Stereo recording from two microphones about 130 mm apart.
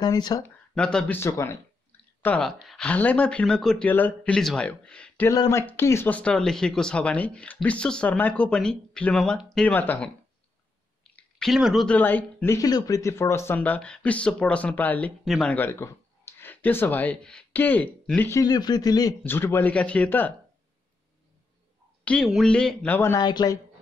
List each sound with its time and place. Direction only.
0.0 s speech: 30° left (ahead or behind)
0.7 s speech: 5° left (ahead or behind)
1.2 s a sound: 20° left (ahead or behind)
2.3 s speech: centre (ahead or behind)
5.3 s speech: 25° left (ahead or behind)
11.1 s speech: 5° left (ahead or behind)
11.9 s speech: 15° left (ahead or behind)
15.2 s speech: centre (ahead or behind)
15.5 s speech: 15° left (ahead or behind)
18.4 s speech: 30° left (ahead or behind)
19.2 s speech: 15° left (ahead or behind)
22.0 s speech: 10° left (ahead or behind)
22.9 s speech: 20° left (ahead or behind)
23.2 s speech: 30° left (ahead or behind)